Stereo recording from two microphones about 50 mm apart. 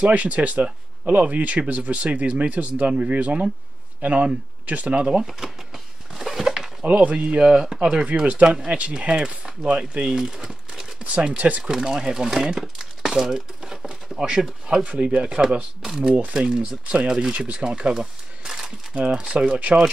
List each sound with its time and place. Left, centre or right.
0.0 s speech: right
4.9 s speech: centre
6.1 s a sound: centre
6.8 s speech: right
11.6 s speech: centre
15.8 s speech: centre
17.9 s a sound: centre
18.9 s speech: centre